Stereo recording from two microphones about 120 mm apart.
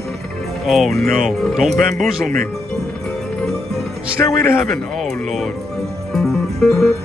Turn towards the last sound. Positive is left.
turn(degrees=5)  # may be behind; listen again after turning